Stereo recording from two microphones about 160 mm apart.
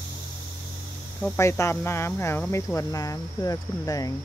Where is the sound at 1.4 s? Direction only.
15° left (ahead or behind).